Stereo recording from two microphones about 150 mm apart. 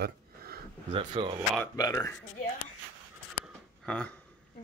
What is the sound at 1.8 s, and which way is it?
Speech, 25° left (ahead or behind).